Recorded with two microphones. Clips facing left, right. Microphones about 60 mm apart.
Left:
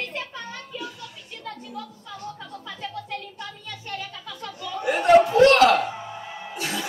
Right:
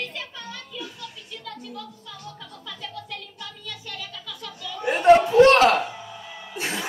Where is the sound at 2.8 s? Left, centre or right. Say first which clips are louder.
Left 4 dB; left.